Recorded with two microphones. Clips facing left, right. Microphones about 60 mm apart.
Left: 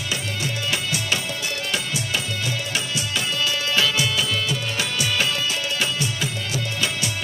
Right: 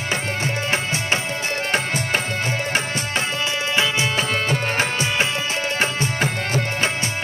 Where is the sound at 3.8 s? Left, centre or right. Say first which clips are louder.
Right 2 dB; right.